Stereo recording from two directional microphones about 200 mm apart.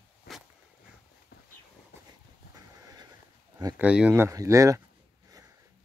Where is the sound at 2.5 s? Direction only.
20° right (ahead or behind).